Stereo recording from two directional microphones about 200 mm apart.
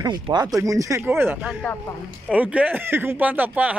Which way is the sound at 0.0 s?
20° right (ahead or behind).